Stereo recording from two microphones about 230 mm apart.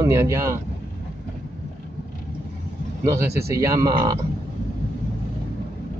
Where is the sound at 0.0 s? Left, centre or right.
Centre.